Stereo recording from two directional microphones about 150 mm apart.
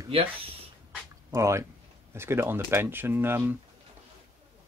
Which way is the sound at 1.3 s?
20° right (ahead or behind).